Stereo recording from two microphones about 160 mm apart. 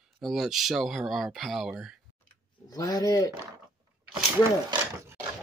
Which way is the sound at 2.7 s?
25° left (ahead or behind).